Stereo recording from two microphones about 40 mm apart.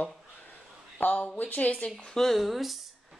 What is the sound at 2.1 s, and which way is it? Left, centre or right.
Speech, centre.